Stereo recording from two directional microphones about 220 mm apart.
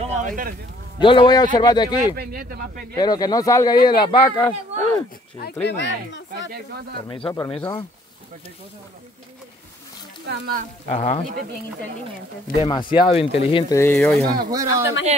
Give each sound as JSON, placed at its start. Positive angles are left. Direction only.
{"t": 0.0, "sound": "a sound", "side_deg": -35}
{"t": 0.9, "sound": "speech", "side_deg": 20}
{"t": 2.1, "sound": "speech", "side_deg": -45}
{"t": 3.0, "sound": "speech", "side_deg": 15}
{"t": 5.4, "sound": "speech", "side_deg": 50}
{"t": 7.1, "sound": "speech", "side_deg": 20}
{"t": 10.2, "sound": "speech", "side_deg": -45}
{"t": 10.9, "sound": "speech", "side_deg": 25}
{"t": 12.6, "sound": "speech", "side_deg": 20}
{"t": 13.7, "sound": "speech", "side_deg": 10}
{"t": 14.5, "sound": "speech", "side_deg": -15}